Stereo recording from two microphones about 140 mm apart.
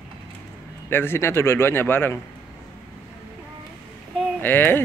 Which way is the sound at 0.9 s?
15° left (ahead or behind).